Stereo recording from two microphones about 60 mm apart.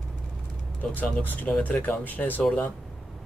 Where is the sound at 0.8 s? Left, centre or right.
Left.